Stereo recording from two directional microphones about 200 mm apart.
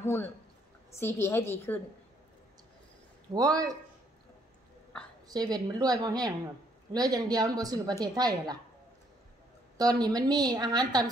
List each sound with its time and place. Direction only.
0.0 s a man's voice: 10° left (ahead or behind)
3.3 s a woman's voice: 20° right (ahead or behind)
5.3 s a woman's voice: 20° right (ahead or behind)
9.8 s a woman's voice: 20° right (ahead or behind)